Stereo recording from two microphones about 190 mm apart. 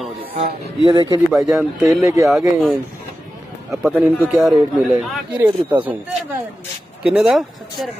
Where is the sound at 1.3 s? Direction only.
5° right (ahead or behind).